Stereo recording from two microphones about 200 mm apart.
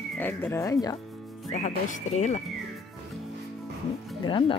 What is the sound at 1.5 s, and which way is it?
Speech, 35° left (ahead or behind).